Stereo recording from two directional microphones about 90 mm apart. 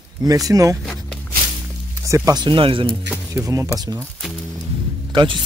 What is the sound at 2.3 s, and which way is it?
Speech, 60° right (ahead or behind).